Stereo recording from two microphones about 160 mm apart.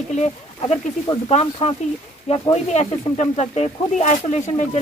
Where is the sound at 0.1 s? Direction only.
45° left (ahead or behind).